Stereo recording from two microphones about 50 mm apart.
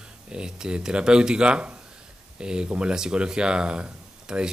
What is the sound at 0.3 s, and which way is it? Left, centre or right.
Speech, centre.